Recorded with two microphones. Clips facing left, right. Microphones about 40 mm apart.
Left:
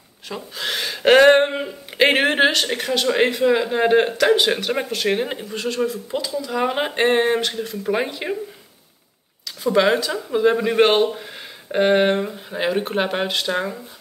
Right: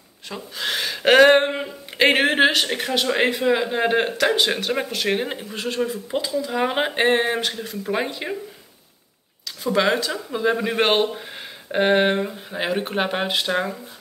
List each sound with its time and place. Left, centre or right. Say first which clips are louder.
0.3 s speech: even; centre
5.9 s speech: even; right; by 8.4 s centre
9.6 s speech: left 3 dB; centre